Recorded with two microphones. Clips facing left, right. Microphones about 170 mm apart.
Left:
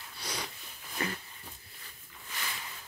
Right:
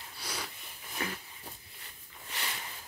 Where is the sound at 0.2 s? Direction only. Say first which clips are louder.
Left 2 dB; 5° right (ahead or behind).